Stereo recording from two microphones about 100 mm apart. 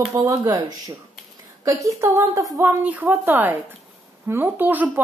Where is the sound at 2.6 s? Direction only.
20° right (ahead or behind).